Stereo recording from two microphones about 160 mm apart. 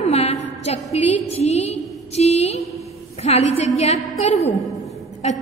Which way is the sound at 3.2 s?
40° left (ahead or behind).